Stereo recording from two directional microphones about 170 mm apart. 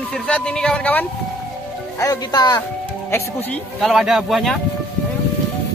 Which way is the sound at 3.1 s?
10° left (ahead or behind).